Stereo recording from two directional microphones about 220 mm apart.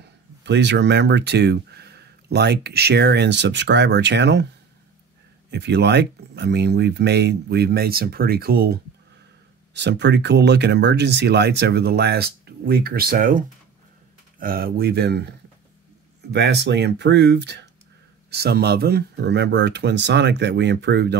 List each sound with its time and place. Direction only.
0.0 s speech: 50° right (ahead or behind)
5.5 s speech: 50° right (ahead or behind)
9.8 s speech: 50° right (ahead or behind)
14.4 s speech: 45° right (ahead or behind)